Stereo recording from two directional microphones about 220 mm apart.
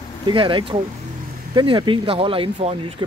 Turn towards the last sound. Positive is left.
turn(degrees=-25)  # may be behind; listen again after turning